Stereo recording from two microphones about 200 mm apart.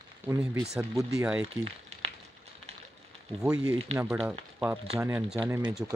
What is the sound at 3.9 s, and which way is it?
Speech, 30° right (ahead or behind).